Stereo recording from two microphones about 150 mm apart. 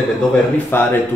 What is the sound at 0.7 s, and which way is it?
Speech, 15° left (ahead or behind).